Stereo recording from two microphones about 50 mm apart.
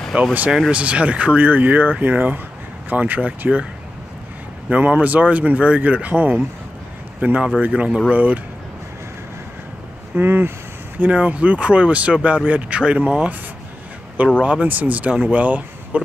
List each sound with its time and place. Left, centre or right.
0.1 s speech: right
4.6 s speech: right
10.1 s speech: right
11.0 s speech: right
14.4 s speech: right